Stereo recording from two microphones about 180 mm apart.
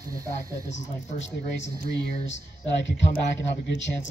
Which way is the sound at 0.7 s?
85° left.